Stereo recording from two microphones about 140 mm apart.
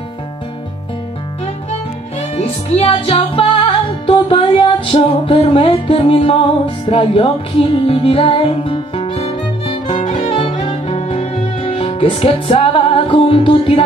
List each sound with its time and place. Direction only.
2.3 s music: 45° left (ahead or behind)
10.0 s violin: 45° left (ahead or behind)
10.6 s music: 40° left (ahead or behind)